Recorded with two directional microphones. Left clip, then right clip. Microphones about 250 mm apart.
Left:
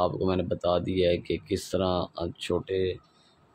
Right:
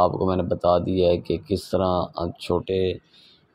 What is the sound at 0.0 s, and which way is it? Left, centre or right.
Speech, centre.